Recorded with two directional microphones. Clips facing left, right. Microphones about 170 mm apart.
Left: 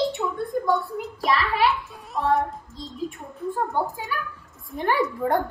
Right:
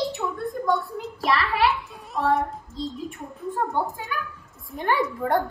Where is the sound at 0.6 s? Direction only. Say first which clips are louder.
Right 2 dB; centre (ahead or behind).